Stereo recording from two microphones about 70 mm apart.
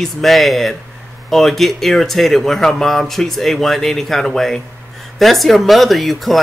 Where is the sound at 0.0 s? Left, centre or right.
Centre.